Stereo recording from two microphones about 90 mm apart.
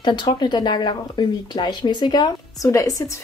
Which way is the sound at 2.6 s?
40° left (ahead or behind).